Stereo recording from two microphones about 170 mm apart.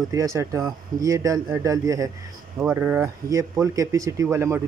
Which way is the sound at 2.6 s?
10° right (ahead or behind).